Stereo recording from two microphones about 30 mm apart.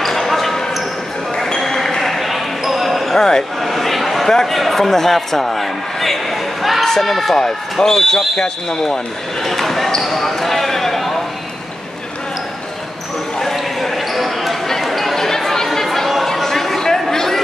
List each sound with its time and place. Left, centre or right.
0.0 s basketball bounce: centre
1.3 s basketball bounce: centre
1.8 s a sound: centre
2.1 s basketball bounce: centre
3.2 s a man's voice: centre
3.6 s a sound: centre
4.5 s a man's voice: centre
6.8 s a man's voice: centre
7.8 s a man's voice: centre
10.0 s basketball bounce: centre
13.4 s basketball bounce: centre
14.8 s chatter: centre
15.1 s chatter: centre
16.4 s a sound: centre